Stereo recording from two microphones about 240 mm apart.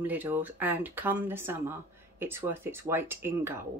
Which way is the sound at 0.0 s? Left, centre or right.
Centre.